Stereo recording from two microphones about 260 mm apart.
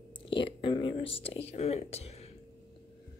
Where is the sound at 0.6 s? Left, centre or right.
Centre.